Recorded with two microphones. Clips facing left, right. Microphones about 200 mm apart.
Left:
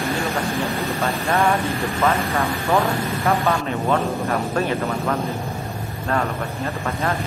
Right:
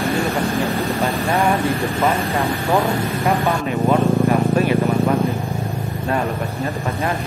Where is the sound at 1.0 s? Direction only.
15° right (ahead or behind).